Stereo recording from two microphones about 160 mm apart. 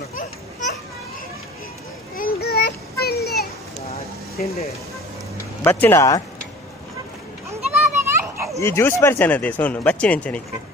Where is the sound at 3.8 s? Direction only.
40° left (ahead or behind).